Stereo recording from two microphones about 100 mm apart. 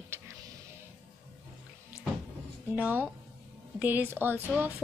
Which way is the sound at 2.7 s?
20° right (ahead or behind).